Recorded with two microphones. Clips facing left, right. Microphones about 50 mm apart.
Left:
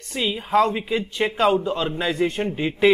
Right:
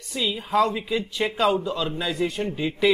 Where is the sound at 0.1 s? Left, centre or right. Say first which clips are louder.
Left 3 dB; left.